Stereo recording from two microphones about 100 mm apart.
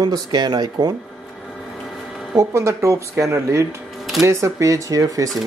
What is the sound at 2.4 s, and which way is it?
Speech, 30° right (ahead or behind).